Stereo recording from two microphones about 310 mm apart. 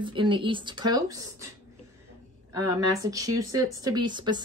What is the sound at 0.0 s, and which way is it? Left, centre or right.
Speech, centre.